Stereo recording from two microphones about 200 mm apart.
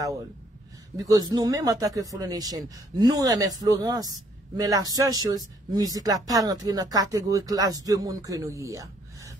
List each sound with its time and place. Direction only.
0.9 s a man's voice: 20° right (ahead or behind)